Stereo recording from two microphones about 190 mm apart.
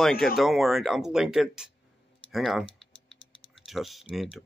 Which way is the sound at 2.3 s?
Centre (ahead or behind).